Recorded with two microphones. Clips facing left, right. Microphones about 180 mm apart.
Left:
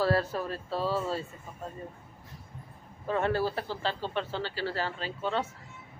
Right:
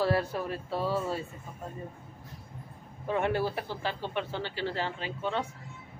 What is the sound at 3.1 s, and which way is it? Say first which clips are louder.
Speech: even; 15° right (ahead or behind).